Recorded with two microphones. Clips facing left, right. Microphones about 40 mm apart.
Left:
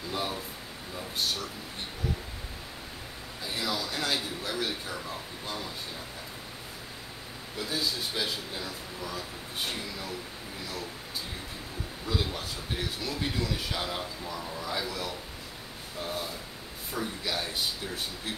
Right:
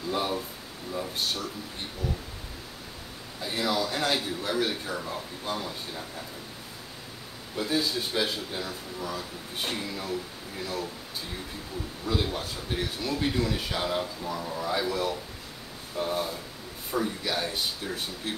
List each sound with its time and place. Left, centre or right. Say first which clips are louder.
0.1 s a man's voice: right 5 dB; centre
3.4 s a man's voice: right 5 dB; centre
7.5 s a man's voice: right 5 dB; right
12.1 s a man's voice: right 3 dB; centre
16.9 s a man's voice: right 4 dB; centre